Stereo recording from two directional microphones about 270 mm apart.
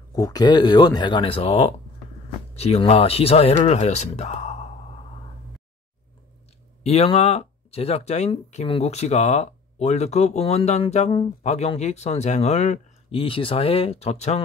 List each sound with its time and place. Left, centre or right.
0.1 s speech: centre
6.8 s speech: left